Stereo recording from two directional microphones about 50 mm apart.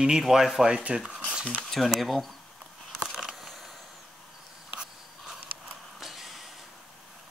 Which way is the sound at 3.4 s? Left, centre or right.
Centre.